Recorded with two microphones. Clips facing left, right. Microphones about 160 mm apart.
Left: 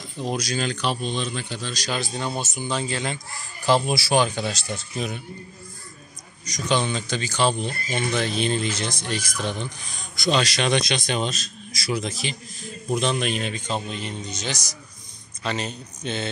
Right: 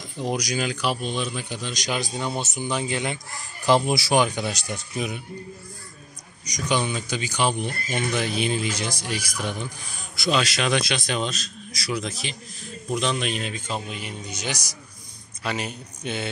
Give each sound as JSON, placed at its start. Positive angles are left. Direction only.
{"t": 0.2, "sound": "a man's voice", "side_deg": -15}
{"t": 6.4, "sound": "a man's voice", "side_deg": -10}